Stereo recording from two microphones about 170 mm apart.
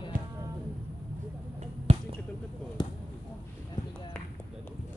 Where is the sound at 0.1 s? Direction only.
55° right (ahead or behind).